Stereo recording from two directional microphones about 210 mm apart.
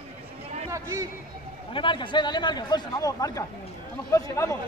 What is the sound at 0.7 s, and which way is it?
Speech, 15° right (ahead or behind).